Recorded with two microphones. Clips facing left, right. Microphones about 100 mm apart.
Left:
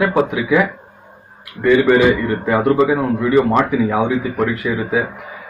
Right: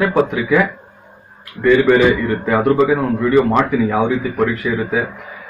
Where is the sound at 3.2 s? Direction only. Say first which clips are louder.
Right 1 dB; 15° left (ahead or behind).